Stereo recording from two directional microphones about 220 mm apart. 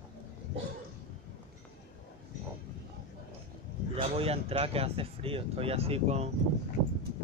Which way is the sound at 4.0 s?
25° right (ahead or behind).